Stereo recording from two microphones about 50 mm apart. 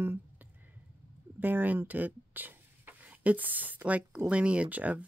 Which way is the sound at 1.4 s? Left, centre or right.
Right.